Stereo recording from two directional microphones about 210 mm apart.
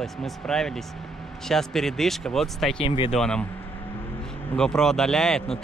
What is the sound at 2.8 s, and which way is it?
Speech, 25° left (ahead or behind).